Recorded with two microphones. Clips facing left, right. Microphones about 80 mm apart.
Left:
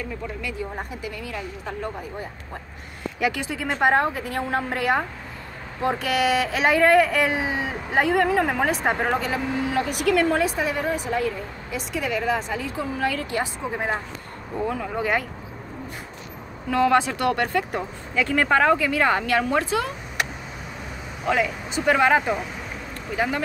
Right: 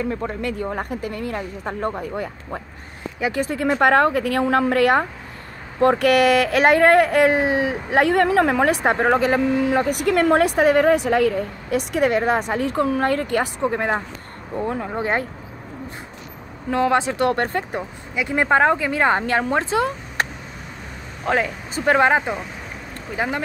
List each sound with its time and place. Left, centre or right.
0.2 s speech: right
3.2 s speech: right
3.4 s a woman's voice: right
8.8 s speech: right
10.2 s a woman's voice: right
14.7 s speech: right
16.7 s speech: right
17.7 s speech: centre
21.3 s speech: right